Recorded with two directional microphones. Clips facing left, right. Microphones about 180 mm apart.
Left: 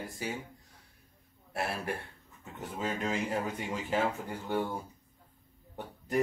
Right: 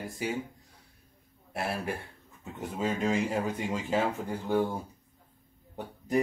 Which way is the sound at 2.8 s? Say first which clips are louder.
Right 5 dB; 25° right (ahead or behind).